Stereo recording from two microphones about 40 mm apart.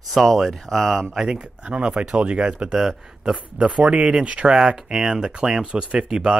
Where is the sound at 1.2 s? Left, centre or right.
Right.